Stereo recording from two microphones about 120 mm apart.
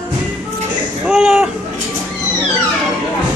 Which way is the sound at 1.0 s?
5° right (ahead or behind).